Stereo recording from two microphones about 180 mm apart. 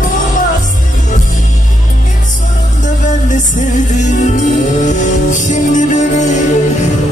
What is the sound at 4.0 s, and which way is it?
Music, 40° left (ahead or behind).